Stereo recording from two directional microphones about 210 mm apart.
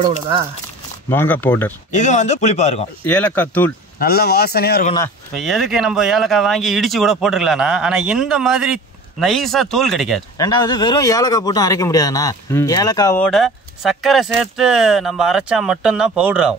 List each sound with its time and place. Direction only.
1.1 s speech: 10° left (ahead or behind)
1.9 s speech: 35° left (ahead or behind)
3.1 s speech: 5° left (ahead or behind)
4.0 s speech: 50° left (ahead or behind)
5.3 s speech: centre (ahead or behind)
10.3 s speech: 20° left (ahead or behind)
13.2 s speech: centre (ahead or behind)